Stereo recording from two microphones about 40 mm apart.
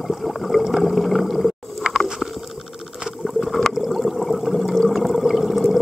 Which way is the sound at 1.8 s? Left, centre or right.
Right.